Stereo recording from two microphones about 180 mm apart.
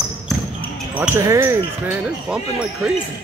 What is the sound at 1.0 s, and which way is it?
Speech, 15° right (ahead or behind).